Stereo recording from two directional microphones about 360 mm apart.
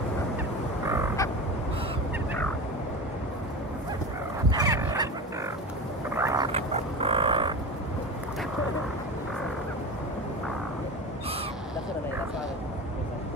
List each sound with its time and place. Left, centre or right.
0.8 s frog: centre
4.5 s fowl: centre
6.1 s a sound: centre